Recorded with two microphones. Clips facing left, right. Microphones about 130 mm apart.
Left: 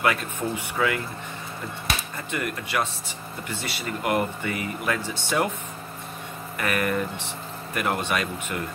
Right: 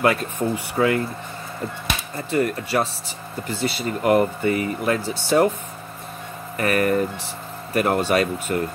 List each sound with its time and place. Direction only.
0.0 s speech: 35° right (ahead or behind)
2.1 s speech: 35° right (ahead or behind)
6.5 s speech: 40° right (ahead or behind)